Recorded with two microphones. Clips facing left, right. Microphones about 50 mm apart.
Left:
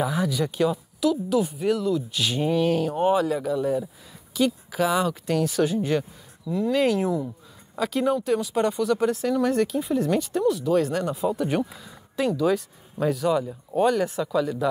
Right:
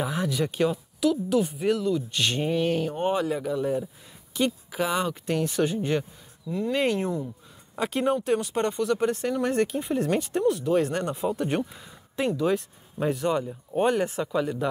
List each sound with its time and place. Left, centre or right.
0.0 s speech: centre
8.5 s speech: centre
11.8 s speech: centre